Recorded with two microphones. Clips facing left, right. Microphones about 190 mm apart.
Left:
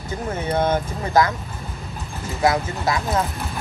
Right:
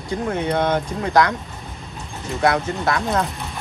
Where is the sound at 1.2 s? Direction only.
70° right (ahead or behind).